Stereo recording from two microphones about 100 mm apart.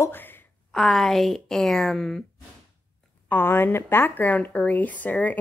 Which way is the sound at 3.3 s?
20° left (ahead or behind).